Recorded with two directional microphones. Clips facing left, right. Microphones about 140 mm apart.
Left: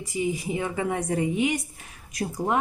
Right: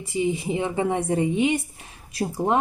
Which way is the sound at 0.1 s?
25° right (ahead or behind).